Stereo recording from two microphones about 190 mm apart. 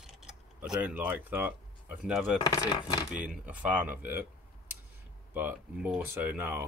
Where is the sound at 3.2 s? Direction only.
5° right (ahead or behind).